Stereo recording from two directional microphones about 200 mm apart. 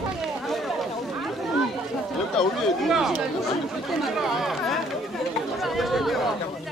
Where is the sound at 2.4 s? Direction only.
Centre (ahead or behind).